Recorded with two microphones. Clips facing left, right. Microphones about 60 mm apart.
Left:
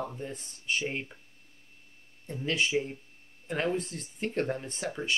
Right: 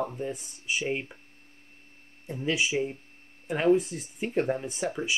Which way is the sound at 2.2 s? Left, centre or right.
Centre.